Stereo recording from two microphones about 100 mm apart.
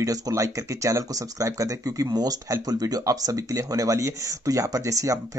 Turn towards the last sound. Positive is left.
turn(degrees=-35)  # may be behind; listen again after turning